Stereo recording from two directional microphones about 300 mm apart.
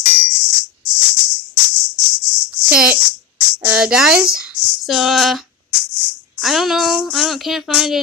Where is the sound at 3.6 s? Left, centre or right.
Centre.